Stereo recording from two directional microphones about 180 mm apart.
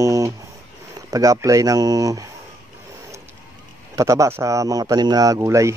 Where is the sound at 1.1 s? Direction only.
20° right (ahead or behind).